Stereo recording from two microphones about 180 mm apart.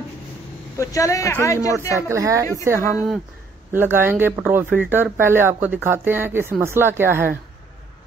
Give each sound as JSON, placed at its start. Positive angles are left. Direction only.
{"t": 0.7, "sound": "speech", "side_deg": 20}
{"t": 2.0, "sound": "speech", "side_deg": -15}